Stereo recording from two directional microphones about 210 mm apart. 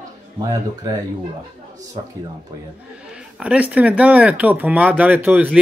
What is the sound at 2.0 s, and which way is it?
Speech, 20° right (ahead or behind).